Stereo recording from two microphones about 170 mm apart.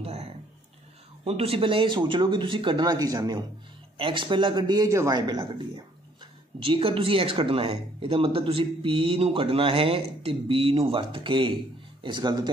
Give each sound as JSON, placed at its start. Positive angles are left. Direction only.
{"t": 0.0, "sound": "a sound", "side_deg": -40}
{"t": 1.2, "sound": "speech", "side_deg": -35}
{"t": 6.6, "sound": "speech", "side_deg": -30}